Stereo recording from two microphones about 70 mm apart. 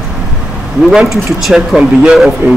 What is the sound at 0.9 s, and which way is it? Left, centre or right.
Speech, centre.